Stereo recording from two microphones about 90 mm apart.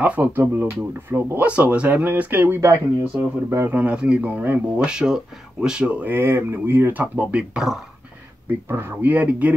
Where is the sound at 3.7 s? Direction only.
15° right (ahead or behind).